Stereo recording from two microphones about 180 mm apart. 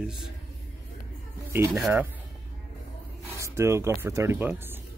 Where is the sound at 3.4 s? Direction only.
15° right (ahead or behind).